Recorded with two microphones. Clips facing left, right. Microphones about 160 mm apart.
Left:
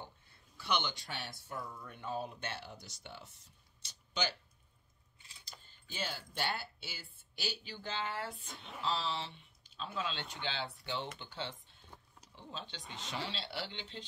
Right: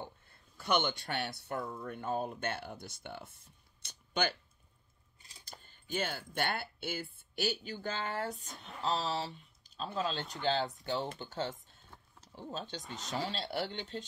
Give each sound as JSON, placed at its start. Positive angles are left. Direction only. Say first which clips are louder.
{"t": 0.6, "sound": "speech", "louder": "right 5 dB", "side_deg": -50}
{"t": 3.8, "sound": "a sound", "louder": "right 4 dB", "side_deg": -55}
{"t": 5.2, "sound": "speech", "louder": "right 4 dB", "side_deg": -45}